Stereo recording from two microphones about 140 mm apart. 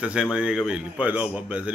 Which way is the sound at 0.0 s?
5° right (ahead or behind).